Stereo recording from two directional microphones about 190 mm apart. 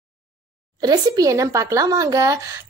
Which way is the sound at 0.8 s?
20° right (ahead or behind).